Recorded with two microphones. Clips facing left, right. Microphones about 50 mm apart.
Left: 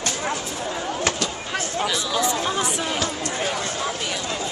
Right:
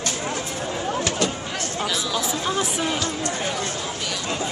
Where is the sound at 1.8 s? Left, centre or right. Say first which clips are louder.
Left 2 dB; centre.